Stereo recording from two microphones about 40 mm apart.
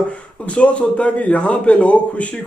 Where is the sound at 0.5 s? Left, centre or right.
Left.